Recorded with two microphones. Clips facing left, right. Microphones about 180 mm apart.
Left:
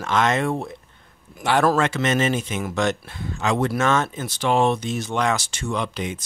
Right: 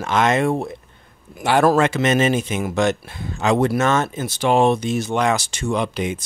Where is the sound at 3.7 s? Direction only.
5° right (ahead or behind).